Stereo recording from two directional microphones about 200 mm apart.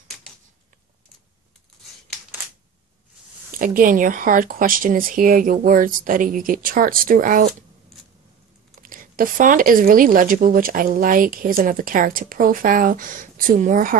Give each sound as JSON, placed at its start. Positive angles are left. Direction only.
{"t": 3.5, "sound": "speech", "side_deg": -45}
{"t": 8.8, "sound": "speech", "side_deg": -45}